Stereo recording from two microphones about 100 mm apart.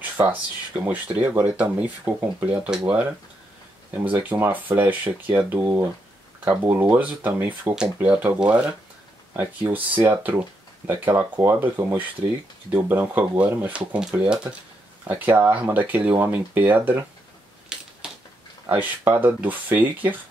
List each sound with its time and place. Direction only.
0.8 s speech: 15° right (ahead or behind)
7.7 s speech: 10° right (ahead or behind)
17.7 s a sound: 5° right (ahead or behind)
18.7 s speech: 20° right (ahead or behind)